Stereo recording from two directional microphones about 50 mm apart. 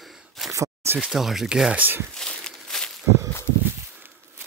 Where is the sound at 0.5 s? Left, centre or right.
Right.